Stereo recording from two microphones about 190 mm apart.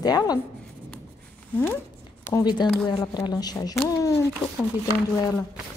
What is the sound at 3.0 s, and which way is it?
Speech, 20° left (ahead or behind).